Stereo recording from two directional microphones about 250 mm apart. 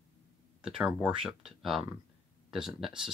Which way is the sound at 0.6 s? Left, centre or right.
Centre.